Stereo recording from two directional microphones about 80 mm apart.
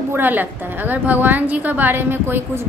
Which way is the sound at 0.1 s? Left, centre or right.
Right.